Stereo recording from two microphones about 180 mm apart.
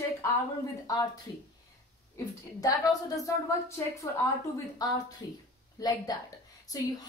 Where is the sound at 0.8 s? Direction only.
20° left (ahead or behind).